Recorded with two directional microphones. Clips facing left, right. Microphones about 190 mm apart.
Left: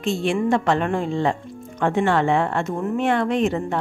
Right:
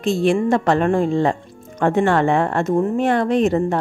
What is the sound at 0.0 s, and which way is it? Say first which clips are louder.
A woman's voice: right 4 dB; 40° right (ahead or behind).